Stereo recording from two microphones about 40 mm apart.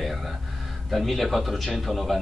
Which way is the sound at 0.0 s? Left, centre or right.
Centre.